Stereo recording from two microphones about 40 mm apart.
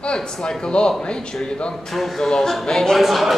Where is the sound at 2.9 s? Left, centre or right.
Centre.